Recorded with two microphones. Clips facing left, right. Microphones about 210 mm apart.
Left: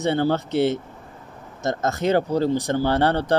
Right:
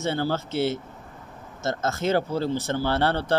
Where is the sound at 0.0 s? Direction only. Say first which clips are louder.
Left 5 dB; 20° left (ahead or behind).